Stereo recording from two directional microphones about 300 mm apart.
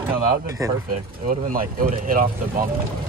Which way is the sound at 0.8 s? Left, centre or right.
Right.